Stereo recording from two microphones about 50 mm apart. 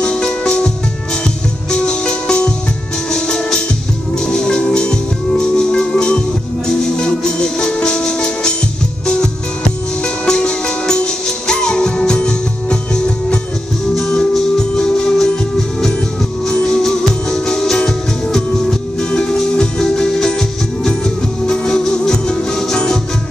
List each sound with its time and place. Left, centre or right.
0.0 s music: centre
1.7 s music: centre
16.4 s music: centre